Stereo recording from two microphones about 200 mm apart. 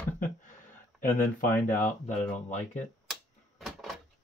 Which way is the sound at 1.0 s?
40° left (ahead or behind).